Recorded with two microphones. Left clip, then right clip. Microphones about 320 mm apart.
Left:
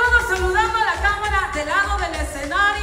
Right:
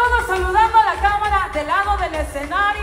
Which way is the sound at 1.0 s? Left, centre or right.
Centre.